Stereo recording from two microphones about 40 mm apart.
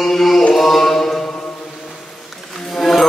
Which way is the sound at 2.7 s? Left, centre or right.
Centre.